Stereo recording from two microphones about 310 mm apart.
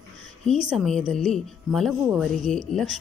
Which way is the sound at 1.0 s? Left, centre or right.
Right.